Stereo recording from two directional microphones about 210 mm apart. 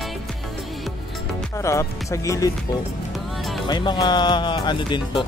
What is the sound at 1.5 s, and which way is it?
Music, 15° left (ahead or behind).